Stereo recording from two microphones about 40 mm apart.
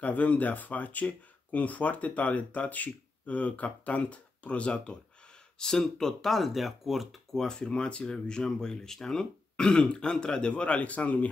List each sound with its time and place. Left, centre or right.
0.0 s speech: left
5.6 s speech: centre
7.3 s speech: centre
9.2 s speech: left